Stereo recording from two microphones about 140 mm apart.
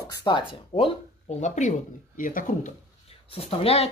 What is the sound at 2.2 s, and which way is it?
Speech, 75° left (ahead or behind).